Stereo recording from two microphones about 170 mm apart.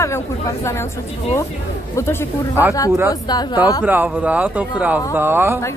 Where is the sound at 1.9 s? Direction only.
15° left (ahead or behind).